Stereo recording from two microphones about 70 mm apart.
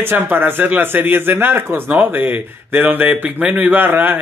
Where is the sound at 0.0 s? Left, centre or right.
Right.